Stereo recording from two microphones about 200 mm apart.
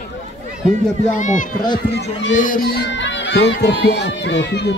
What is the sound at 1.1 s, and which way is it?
Speech, 40° left (ahead or behind).